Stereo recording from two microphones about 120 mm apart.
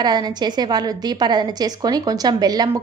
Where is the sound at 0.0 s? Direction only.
35° right (ahead or behind).